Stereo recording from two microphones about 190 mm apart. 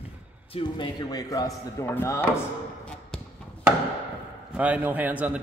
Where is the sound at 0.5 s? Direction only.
25° left (ahead or behind).